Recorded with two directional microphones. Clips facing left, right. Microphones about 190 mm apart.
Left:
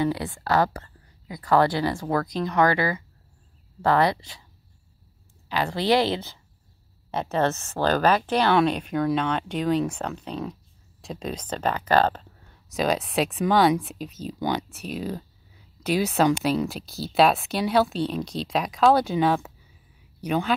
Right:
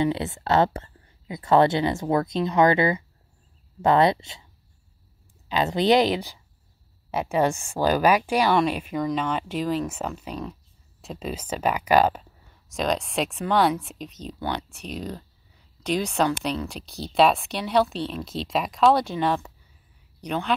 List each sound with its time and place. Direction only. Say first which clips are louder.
0.0 s speech: right 1 dB; 25° right (ahead or behind)
5.5 s speech: right 2 dB; 20° right (ahead or behind)
12.7 s a woman's voice: left 2 dB; 5° left (ahead or behind)